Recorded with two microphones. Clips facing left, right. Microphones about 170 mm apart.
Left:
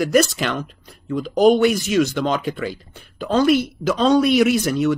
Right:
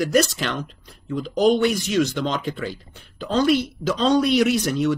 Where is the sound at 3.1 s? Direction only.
50° left (ahead or behind).